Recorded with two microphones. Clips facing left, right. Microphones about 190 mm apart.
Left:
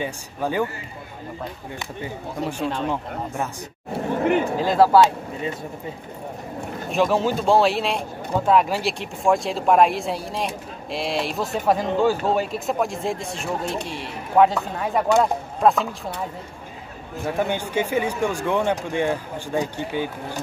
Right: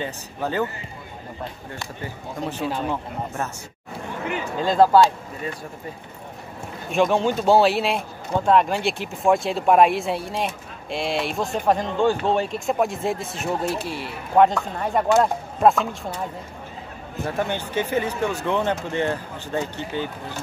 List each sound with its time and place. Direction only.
0.0 s speech: 10° left (ahead or behind)
2.6 s speech: 5° right (ahead or behind)
3.9 s a sound: 50° left (ahead or behind)
4.6 s speech: 5° left (ahead or behind)
6.9 s speech: centre (ahead or behind)
17.4 s speech: 15° left (ahead or behind)